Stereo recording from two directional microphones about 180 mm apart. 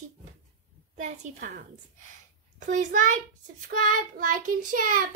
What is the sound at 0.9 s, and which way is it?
Speech, 40° right (ahead or behind).